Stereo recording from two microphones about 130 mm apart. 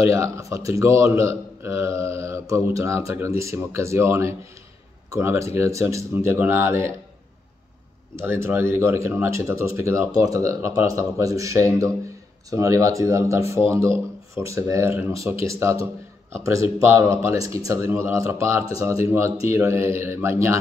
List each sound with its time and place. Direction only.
0.0 s a man's voice: 25° right (ahead or behind)
8.2 s a man's voice: 20° right (ahead or behind)